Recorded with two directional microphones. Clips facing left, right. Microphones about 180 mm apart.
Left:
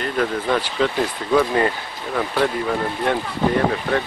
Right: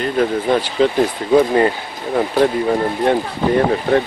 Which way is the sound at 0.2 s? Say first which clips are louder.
Right 4 dB; 30° right (ahead or behind).